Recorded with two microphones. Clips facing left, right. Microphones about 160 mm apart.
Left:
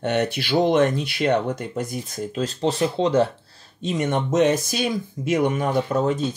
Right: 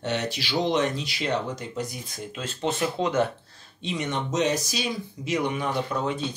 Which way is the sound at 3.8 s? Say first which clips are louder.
Left 6 dB; 45° left (ahead or behind).